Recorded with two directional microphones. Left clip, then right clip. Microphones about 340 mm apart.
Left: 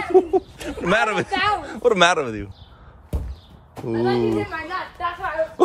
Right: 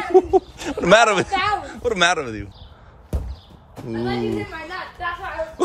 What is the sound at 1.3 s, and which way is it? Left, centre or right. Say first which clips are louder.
Speech: even; left.